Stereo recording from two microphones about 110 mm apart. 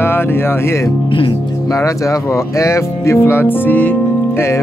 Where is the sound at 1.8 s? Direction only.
30° left (ahead or behind).